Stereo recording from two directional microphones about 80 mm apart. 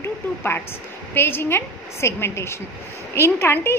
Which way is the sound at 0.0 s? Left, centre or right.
Left.